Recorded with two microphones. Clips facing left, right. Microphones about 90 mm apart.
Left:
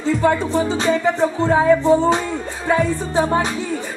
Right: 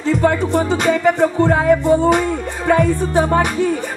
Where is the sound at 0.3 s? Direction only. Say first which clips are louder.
Right 1 dB; 60° right (ahead or behind).